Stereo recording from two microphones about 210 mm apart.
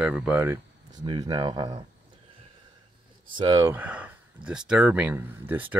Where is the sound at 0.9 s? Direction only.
20° right (ahead or behind).